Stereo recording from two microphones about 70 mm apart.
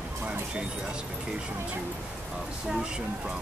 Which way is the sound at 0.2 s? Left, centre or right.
Centre.